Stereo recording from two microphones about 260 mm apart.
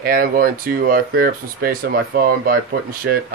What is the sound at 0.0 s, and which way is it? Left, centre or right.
Speech, right.